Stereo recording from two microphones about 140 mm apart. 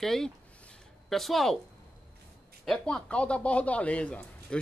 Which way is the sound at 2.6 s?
5° left (ahead or behind).